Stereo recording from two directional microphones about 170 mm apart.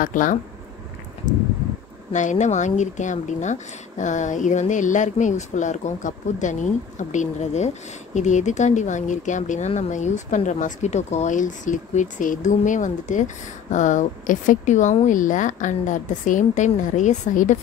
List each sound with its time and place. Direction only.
0.0 s speech: 50° left (ahead or behind)
2.1 s speech: 45° left (ahead or behind)